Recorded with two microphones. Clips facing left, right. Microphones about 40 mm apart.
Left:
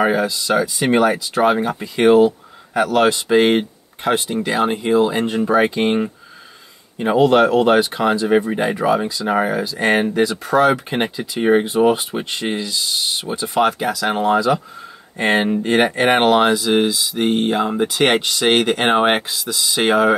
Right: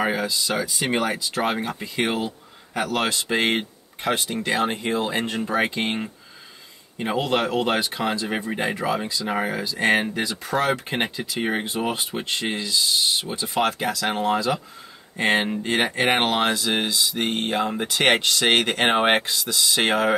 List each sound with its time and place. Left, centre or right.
0.0 s speech: centre